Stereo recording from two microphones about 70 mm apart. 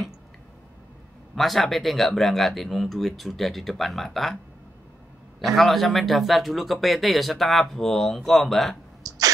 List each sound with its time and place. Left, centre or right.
1.3 s speech: centre
5.4 s speech: centre
9.0 s a sound: right